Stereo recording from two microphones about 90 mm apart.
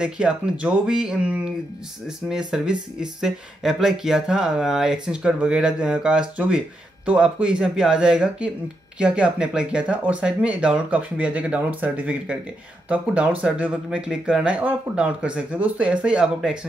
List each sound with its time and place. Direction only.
0.0 s speech: 10° right (ahead or behind)